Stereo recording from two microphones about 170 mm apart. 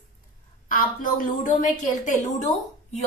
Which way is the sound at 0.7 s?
55° left (ahead or behind).